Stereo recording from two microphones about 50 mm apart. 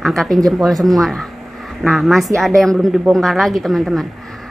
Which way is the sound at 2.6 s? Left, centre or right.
Centre.